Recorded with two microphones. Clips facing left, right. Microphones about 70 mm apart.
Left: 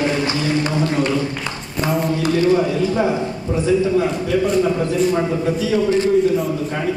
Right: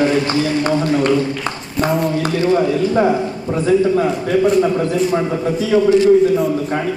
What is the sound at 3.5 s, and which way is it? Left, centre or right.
Speech, right.